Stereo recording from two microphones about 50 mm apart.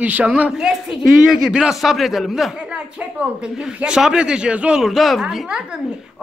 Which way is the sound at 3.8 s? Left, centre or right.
Centre.